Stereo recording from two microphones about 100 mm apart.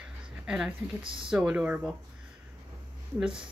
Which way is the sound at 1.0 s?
60° right (ahead or behind).